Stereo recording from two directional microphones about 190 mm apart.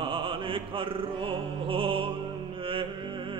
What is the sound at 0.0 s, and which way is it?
Music, 25° right (ahead or behind).